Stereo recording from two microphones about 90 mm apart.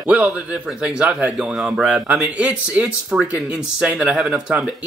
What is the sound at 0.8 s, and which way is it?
Speech, 10° right (ahead or behind).